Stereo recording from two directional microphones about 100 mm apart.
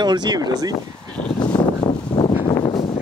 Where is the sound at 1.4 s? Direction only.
60° left (ahead or behind).